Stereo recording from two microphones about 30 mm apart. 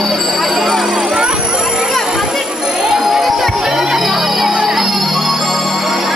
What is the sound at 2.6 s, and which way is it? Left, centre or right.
Music, right.